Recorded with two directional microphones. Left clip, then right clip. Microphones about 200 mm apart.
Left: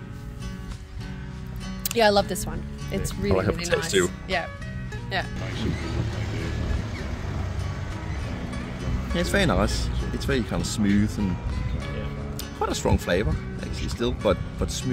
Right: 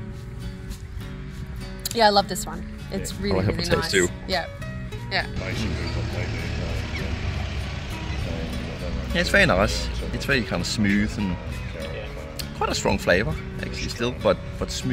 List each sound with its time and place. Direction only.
2.0 s speech: 15° left (ahead or behind)
5.1 s speech: 20° right (ahead or behind)
9.1 s speech: 5° left (ahead or behind)
12.5 s speech: 5° left (ahead or behind)